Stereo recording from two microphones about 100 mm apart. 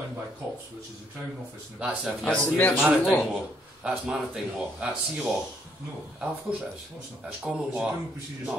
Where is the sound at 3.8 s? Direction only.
5° right (ahead or behind).